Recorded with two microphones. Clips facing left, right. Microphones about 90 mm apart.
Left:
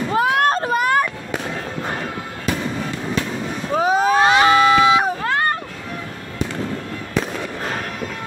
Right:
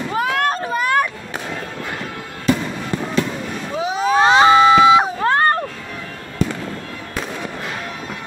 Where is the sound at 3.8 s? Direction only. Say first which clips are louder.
Left 4 dB; 45° left (ahead or behind).